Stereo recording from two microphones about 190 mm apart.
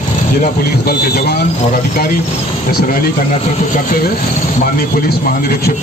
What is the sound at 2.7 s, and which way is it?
Speech, 55° left (ahead or behind).